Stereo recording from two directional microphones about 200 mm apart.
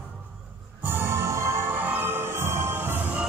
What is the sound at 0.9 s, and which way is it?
Music, 10° right (ahead or behind).